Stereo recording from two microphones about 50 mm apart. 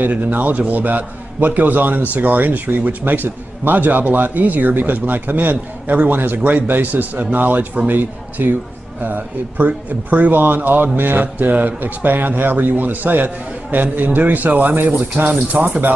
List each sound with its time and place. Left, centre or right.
0.0 s a man's voice: right